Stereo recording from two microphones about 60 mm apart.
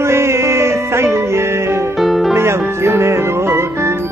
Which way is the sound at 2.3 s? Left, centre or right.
Right.